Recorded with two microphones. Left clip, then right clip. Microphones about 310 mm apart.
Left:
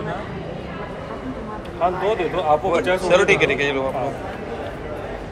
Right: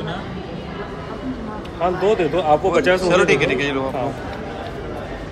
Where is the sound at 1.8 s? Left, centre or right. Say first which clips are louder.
Right 2 dB; right.